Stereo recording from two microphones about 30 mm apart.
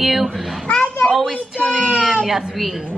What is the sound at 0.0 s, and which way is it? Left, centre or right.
Speech, centre.